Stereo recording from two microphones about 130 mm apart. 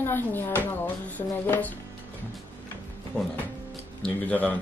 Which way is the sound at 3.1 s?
10° left (ahead or behind).